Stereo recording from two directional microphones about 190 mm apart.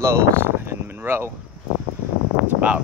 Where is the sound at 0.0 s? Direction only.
15° right (ahead or behind).